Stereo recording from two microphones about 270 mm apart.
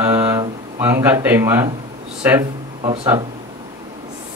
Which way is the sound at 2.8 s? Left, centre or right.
Centre.